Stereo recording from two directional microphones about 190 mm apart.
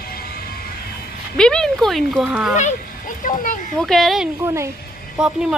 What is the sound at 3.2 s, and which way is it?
Speech, 45° left (ahead or behind).